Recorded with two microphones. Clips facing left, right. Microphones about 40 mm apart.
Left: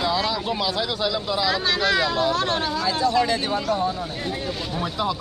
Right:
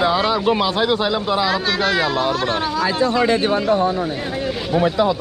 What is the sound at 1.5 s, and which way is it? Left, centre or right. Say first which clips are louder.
Speech: right 3 dB; centre.